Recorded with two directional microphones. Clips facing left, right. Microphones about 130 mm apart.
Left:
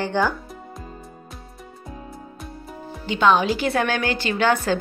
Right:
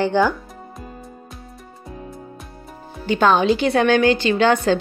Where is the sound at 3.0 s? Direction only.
40° right (ahead or behind).